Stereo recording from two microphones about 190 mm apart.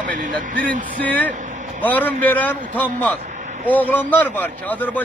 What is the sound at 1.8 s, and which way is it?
Speech, 10° left (ahead or behind).